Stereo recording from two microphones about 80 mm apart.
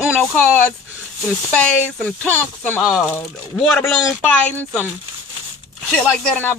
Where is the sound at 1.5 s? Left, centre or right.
Centre.